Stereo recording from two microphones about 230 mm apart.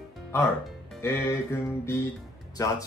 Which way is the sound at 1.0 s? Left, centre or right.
Centre.